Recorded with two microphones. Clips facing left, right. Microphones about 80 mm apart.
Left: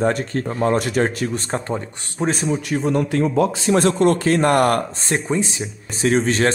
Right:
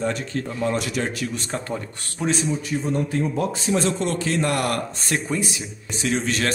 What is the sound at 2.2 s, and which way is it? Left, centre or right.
Speech, left.